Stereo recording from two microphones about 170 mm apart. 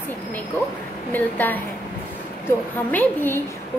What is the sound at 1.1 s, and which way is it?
Speech, 10° left (ahead or behind).